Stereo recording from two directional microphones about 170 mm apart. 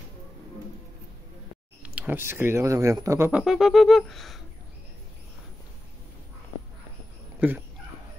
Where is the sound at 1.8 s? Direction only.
10° right (ahead or behind).